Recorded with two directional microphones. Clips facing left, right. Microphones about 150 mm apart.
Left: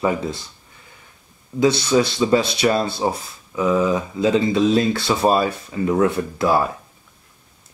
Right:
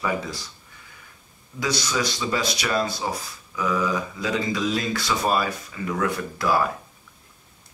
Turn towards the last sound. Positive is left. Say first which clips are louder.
# left 4 dB
turn(degrees=25)  # may be behind; listen again after turning